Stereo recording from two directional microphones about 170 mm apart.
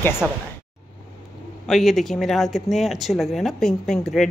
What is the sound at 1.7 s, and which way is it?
Speech, centre (ahead or behind).